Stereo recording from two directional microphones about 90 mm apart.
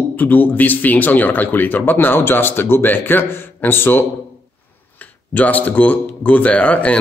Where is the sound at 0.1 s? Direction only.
20° left (ahead or behind).